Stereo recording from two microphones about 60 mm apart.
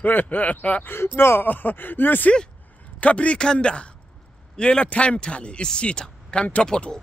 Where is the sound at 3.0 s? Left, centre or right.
Left.